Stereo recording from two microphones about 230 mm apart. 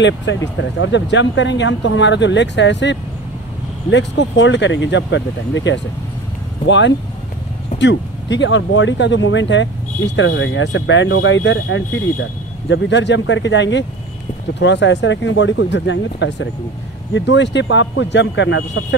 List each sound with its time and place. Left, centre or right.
0.0 s speech: left